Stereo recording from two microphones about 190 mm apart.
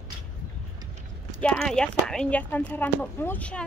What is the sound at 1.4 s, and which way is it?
Speech, 5° left (ahead or behind).